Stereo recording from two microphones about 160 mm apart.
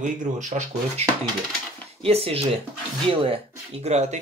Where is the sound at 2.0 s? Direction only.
35° right (ahead or behind).